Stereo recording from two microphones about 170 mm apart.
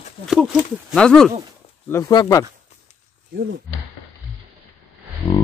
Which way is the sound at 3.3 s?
65° right (ahead or behind).